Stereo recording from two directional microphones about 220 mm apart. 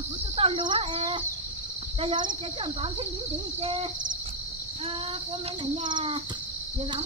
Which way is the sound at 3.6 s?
25° right (ahead or behind).